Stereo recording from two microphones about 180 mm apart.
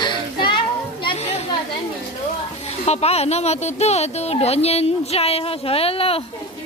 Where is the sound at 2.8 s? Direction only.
35° left (ahead or behind).